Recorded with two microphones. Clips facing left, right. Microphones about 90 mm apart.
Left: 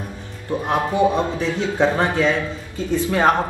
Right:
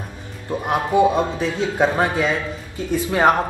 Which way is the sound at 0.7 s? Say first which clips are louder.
Right 2 dB; 15° right (ahead or behind).